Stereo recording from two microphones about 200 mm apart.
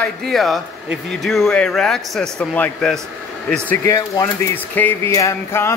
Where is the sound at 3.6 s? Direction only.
15° left (ahead or behind).